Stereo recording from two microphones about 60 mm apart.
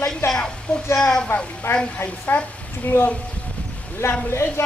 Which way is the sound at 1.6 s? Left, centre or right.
Left.